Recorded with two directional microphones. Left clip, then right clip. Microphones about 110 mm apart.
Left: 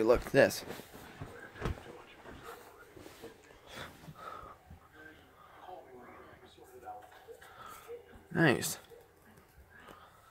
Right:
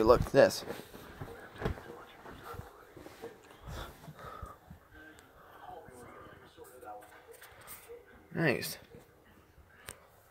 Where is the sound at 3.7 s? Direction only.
20° left (ahead or behind).